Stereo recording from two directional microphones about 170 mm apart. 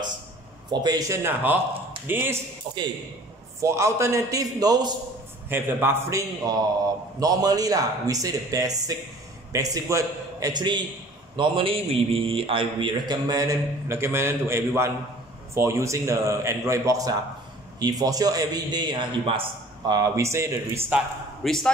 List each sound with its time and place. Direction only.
0.7 s a man's voice: 25° right (ahead or behind)
3.6 s a man's voice: 15° right (ahead or behind)
20.0 s a man's voice: 15° right (ahead or behind)
21.5 s a man's voice: 5° left (ahead or behind)